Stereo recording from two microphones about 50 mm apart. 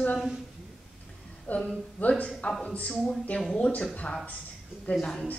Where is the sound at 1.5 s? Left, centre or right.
Left.